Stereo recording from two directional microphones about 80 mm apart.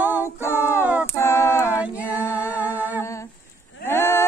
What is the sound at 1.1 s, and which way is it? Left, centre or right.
Female singing, left.